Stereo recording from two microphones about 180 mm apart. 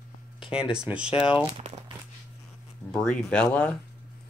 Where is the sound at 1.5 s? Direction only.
30° right (ahead or behind).